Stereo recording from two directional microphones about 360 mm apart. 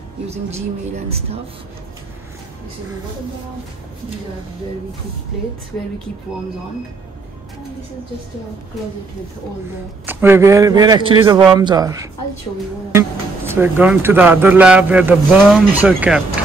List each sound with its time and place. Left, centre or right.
0.3 s a man's voice: centre
10.0 s a man's voice: centre
13.5 s speech: centre